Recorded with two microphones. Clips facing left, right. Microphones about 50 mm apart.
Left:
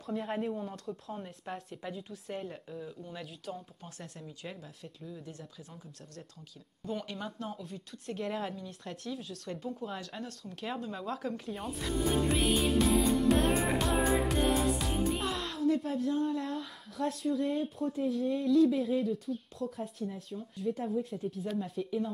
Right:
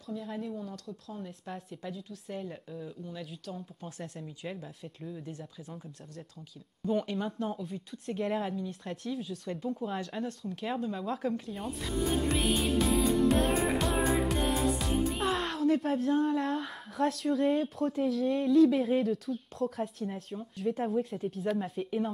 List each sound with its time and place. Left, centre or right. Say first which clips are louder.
0.0 s speech: left 3 dB; left
0.5 s speech: left 2 dB; left
1.2 s speech: even; centre
11.1 s music: right 3 dB; centre
15.2 s a child's voice: right 3 dB; right
18.6 s speech: right 4 dB; right
20.8 s speech: right 3 dB; right